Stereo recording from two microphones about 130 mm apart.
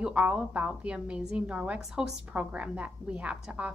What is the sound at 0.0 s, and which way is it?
A woman's voice, 10° right (ahead or behind).